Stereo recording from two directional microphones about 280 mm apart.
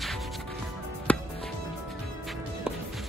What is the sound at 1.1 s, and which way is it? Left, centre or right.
Music, centre.